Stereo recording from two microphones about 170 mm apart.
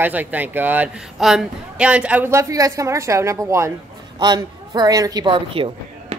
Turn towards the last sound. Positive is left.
turn(degrees=-30)  # may be behind; listen again after turning